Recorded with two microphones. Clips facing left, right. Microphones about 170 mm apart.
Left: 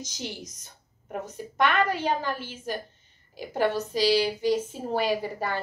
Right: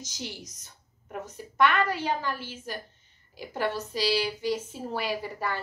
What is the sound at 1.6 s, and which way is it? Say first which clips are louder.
A woman's voice: left 1 dB; 20° left (ahead or behind).